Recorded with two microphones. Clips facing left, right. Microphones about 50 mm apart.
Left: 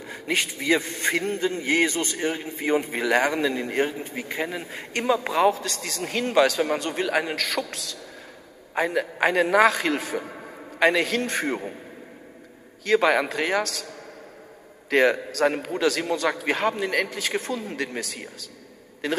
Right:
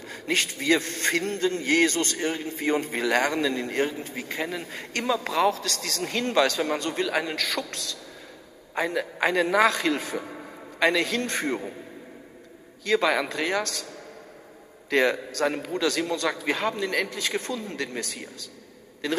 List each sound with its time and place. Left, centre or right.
0.0 s a man's voice: centre
12.8 s a man's voice: centre
14.9 s a man's voice: centre
15.4 s a man's voice: centre
15.7 s a man's voice: centre